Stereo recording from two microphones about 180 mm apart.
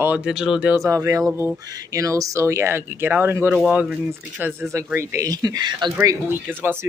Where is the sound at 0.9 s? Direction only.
20° right (ahead or behind).